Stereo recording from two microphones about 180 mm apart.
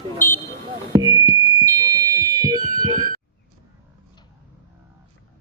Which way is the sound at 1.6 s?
10° left (ahead or behind).